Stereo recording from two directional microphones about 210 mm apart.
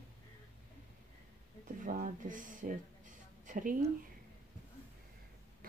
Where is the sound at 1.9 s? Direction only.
40° right (ahead or behind).